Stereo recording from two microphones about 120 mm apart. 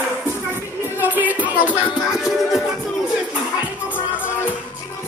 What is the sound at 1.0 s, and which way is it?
Music, 15° right (ahead or behind).